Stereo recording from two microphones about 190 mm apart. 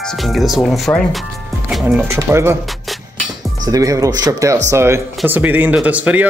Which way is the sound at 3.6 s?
20° right (ahead or behind).